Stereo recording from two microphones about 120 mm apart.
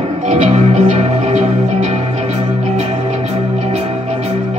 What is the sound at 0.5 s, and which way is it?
Music, 70° right (ahead or behind).